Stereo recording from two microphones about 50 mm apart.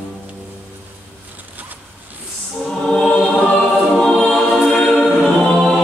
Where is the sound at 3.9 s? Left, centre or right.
Centre.